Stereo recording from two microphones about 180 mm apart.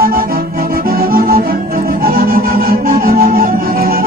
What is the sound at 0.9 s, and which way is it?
Music, 55° right (ahead or behind).